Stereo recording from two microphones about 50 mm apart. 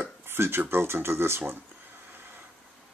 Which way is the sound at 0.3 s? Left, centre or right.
Right.